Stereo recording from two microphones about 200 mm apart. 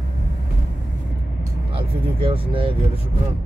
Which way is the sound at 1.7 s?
25° right (ahead or behind).